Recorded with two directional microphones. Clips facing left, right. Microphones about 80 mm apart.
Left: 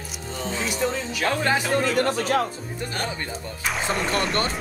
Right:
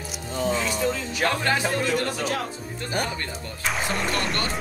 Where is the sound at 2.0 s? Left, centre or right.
Left.